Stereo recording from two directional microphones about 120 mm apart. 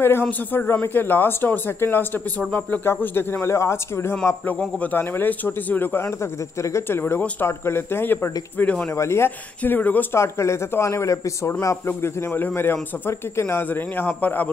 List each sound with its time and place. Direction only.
0.0 s speech: 15° left (ahead or behind)